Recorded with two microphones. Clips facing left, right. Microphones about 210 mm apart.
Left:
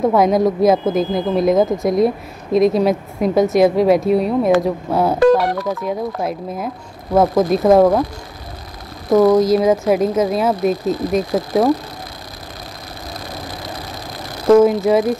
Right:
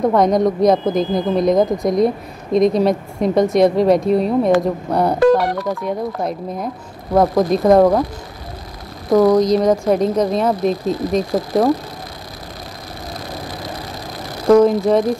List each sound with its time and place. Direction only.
0.0 s speech: 5° left (ahead or behind)
9.1 s speech: 5° left (ahead or behind)
14.5 s speech: 5° left (ahead or behind)